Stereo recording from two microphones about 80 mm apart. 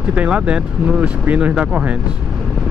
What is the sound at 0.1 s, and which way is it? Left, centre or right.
Speech, centre.